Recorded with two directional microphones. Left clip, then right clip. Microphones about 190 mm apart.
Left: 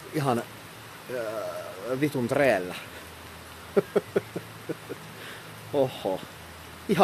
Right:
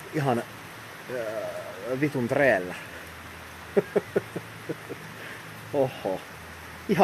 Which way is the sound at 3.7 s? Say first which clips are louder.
Even; 5° left (ahead or behind).